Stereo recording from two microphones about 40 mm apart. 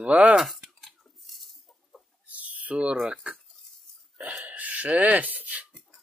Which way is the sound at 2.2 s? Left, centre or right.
Right.